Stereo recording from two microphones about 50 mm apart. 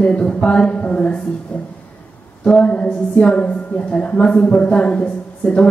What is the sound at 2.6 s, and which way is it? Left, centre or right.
A woman's voice, left.